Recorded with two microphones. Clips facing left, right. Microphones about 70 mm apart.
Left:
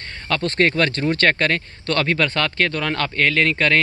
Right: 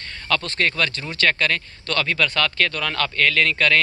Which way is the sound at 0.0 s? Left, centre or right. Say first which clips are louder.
Left 2 dB; left.